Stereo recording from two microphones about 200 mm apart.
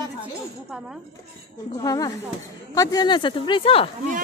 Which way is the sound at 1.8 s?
20° left (ahead or behind).